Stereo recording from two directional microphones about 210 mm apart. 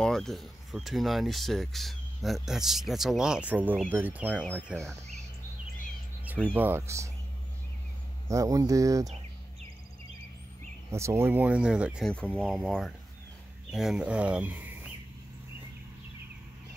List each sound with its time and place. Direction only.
0.0 s speech: centre (ahead or behind)
6.5 s speech: 10° right (ahead or behind)
8.3 s speech: 15° right (ahead or behind)
9.0 s a sound: 30° right (ahead or behind)
10.9 s speech: 15° right (ahead or behind)